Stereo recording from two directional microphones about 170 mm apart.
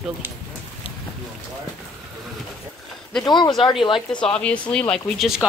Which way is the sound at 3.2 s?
25° left (ahead or behind).